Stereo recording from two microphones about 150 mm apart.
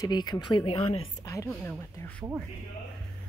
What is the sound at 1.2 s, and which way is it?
Speech, 15° left (ahead or behind).